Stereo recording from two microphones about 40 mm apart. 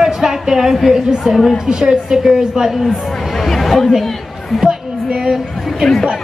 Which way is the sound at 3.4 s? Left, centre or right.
Centre.